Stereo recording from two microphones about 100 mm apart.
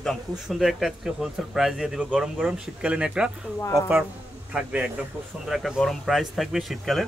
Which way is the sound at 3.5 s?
30° left (ahead or behind).